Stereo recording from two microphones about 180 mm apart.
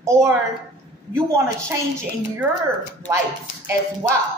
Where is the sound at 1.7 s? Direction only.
15° right (ahead or behind).